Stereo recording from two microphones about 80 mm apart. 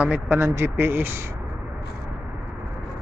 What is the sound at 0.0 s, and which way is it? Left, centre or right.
Speech, right.